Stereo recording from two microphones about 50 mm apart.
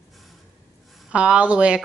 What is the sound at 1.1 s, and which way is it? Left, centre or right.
Speech, right.